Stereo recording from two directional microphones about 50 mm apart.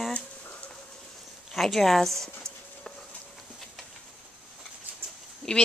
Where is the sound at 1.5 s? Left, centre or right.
Centre.